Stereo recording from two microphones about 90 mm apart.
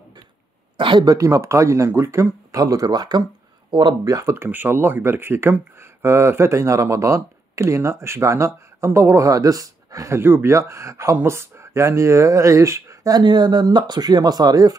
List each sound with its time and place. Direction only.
0.7 s speech: 65° right (ahead or behind)
1.0 s speech: 40° right (ahead or behind)
4.0 s speech: 40° right (ahead or behind)
4.5 s speech: 25° right (ahead or behind)
13.2 s speech: 55° right (ahead or behind)